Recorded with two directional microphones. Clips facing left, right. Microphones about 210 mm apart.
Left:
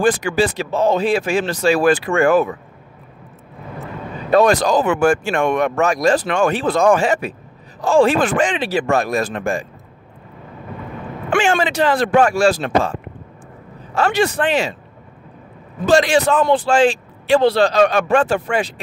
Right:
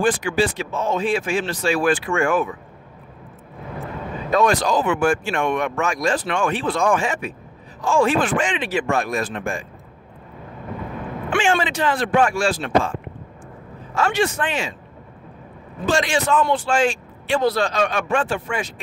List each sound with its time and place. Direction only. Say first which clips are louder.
0.0 s speech: left 3 dB; 40° left (ahead or behind)
4.3 s speech: left 5 dB; 35° left (ahead or behind)
11.2 s speech: left 3 dB; 40° left (ahead or behind)
13.9 s speech: left 3 dB; 35° left (ahead or behind)
15.8 s speech: left 7 dB; 40° left (ahead or behind)